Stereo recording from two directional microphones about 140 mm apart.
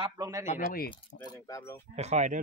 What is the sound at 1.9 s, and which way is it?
Speech, 50° right (ahead or behind).